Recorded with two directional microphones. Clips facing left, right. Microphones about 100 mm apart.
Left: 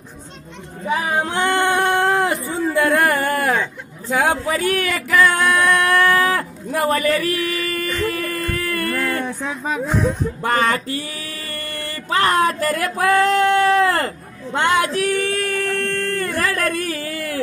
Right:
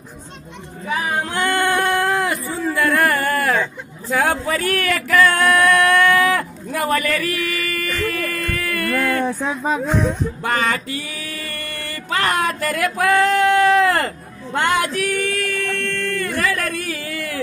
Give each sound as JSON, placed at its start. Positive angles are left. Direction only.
{"t": 0.8, "sound": "male singing", "side_deg": 25}
{"t": 4.1, "sound": "speech", "side_deg": 15}
{"t": 5.2, "sound": "male singing", "side_deg": 15}
{"t": 5.9, "sound": "a sound", "side_deg": 35}
{"t": 9.0, "sound": "speech", "side_deg": -30}
{"t": 10.4, "sound": "a sound", "side_deg": 40}